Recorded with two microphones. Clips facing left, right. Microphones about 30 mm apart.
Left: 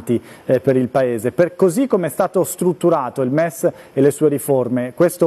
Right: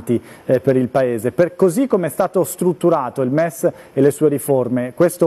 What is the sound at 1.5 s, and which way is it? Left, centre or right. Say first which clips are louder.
A man's voice: even; centre.